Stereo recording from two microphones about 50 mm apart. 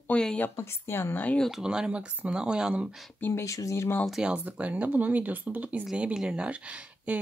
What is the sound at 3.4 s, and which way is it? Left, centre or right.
Speech, left.